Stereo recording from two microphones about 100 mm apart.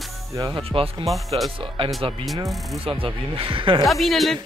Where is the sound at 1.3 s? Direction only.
60° right (ahead or behind).